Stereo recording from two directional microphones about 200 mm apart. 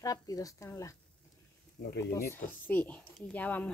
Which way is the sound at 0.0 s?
15° left (ahead or behind).